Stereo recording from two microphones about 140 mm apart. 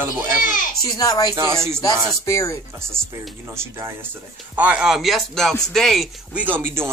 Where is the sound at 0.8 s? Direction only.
25° left (ahead or behind).